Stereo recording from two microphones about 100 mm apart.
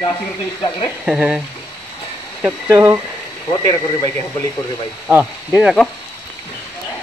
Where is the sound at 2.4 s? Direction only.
25° right (ahead or behind).